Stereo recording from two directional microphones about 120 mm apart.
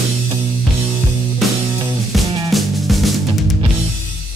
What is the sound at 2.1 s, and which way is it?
Music, centre (ahead or behind).